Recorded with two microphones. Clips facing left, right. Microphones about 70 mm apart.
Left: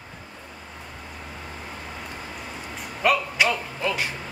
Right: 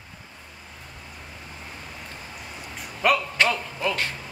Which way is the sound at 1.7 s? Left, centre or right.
Left.